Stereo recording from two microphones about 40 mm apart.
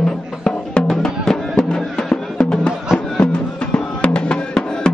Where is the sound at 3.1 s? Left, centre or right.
Left.